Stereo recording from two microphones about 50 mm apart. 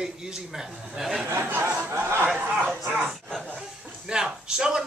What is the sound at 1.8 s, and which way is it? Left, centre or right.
Speech, right.